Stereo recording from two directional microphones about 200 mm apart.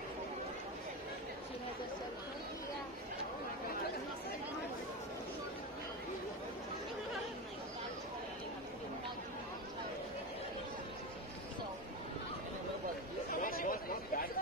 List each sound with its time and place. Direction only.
13.3 s chatter: 45° left (ahead or behind)